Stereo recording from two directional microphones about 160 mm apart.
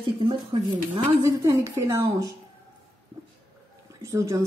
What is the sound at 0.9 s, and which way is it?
Speech, 20° right (ahead or behind).